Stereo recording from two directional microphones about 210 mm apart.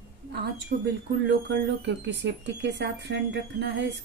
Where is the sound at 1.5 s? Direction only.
60° right (ahead or behind).